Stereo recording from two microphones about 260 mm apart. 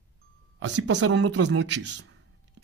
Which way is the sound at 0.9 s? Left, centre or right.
Right.